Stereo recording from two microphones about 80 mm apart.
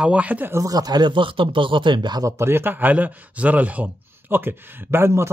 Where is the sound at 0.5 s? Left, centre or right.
Right.